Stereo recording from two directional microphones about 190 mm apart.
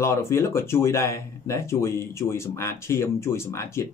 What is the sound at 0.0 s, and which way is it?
Speech, 15° left (ahead or behind).